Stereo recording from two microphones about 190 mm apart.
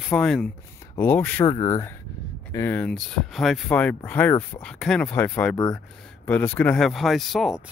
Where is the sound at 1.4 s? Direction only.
20° left (ahead or behind).